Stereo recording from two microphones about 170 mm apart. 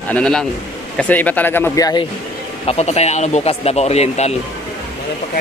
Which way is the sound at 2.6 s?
40° left (ahead or behind).